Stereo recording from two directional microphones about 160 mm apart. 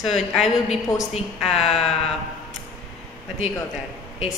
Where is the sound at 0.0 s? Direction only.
Centre (ahead or behind).